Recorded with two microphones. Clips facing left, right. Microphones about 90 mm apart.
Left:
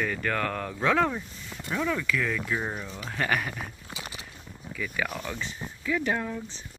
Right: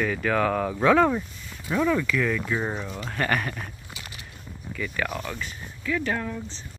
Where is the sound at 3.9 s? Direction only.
25° left (ahead or behind).